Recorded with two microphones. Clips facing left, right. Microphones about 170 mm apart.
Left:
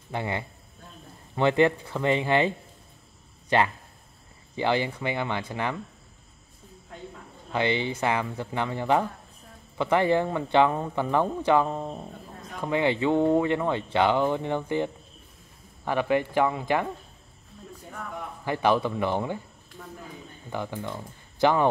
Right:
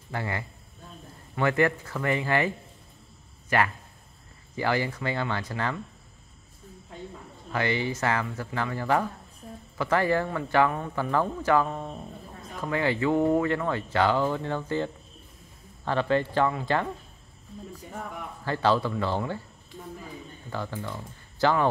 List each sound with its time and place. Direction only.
0.1 s speech: 20° left (ahead or behind)
7.5 s speech: 20° left (ahead or behind)
18.4 s speech: 15° left (ahead or behind)
20.4 s speech: 15° left (ahead or behind)